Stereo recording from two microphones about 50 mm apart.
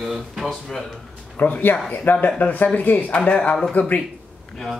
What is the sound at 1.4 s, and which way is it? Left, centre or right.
Speech, left.